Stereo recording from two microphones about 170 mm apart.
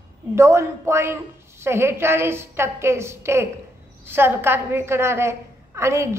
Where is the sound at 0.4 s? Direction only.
15° right (ahead or behind).